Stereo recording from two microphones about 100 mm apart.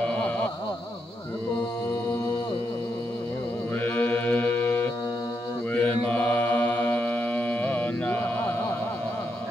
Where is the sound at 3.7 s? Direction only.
15° left (ahead or behind).